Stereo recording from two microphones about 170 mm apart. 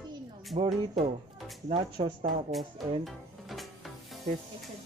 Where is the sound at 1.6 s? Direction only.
35° right (ahead or behind).